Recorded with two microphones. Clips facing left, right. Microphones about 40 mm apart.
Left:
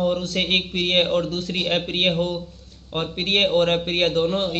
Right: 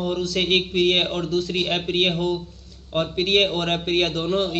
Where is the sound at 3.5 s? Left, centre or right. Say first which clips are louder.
Left 4 dB; centre.